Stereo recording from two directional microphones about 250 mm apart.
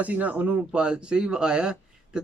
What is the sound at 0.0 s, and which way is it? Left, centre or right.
Speech, centre.